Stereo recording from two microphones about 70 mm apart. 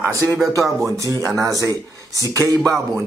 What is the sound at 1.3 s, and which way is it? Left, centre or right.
A man's voice, right.